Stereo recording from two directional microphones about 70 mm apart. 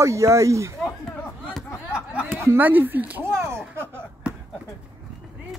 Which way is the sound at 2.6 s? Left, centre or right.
Right.